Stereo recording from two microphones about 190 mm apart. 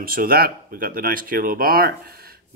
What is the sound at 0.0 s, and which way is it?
Speech, 50° right (ahead or behind).